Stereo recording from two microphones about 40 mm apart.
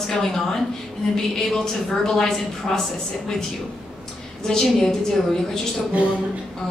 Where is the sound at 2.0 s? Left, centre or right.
Centre.